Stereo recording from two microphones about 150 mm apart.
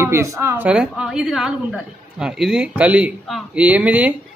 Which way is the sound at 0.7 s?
5° right (ahead or behind).